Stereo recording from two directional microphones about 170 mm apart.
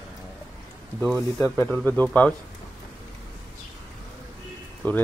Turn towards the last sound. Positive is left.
turn(degrees=10)  # may be behind; listen again after turning